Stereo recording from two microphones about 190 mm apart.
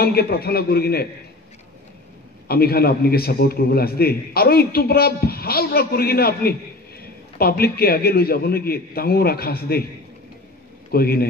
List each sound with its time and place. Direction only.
0.0 s a man's voice: 55° left (ahead or behind)
2.4 s a man's voice: 55° left (ahead or behind)
10.9 s a man's voice: 55° left (ahead or behind)